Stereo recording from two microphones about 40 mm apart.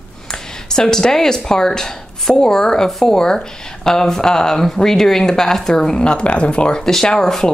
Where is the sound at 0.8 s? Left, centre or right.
Centre.